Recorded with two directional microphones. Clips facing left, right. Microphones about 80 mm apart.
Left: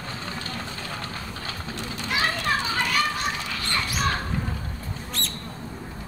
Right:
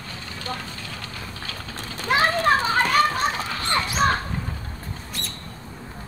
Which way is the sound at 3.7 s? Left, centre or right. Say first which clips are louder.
Right 5 dB; right.